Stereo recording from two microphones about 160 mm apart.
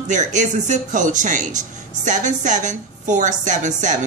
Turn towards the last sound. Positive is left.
turn(degrees=-50)  # may be behind; listen again after turning